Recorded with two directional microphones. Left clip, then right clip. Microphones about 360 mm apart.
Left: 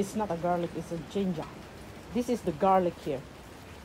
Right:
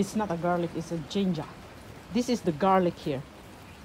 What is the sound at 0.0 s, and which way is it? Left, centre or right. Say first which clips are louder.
Speech: right 1 dB; right.